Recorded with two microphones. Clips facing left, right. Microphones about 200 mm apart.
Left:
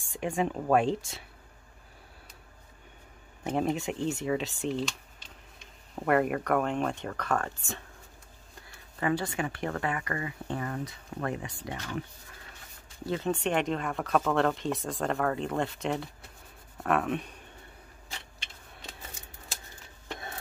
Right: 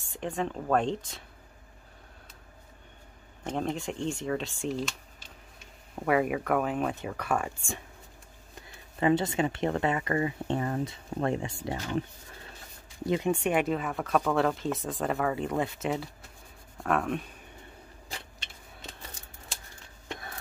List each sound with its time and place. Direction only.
0.1 s speech: 10° left (ahead or behind)
3.4 s speech: 5° left (ahead or behind); by 7.6 s 10° right (ahead or behind)
8.5 s speech: 20° right (ahead or behind)
13.0 s speech: 15° right (ahead or behind); by 17.3 s centre (ahead or behind)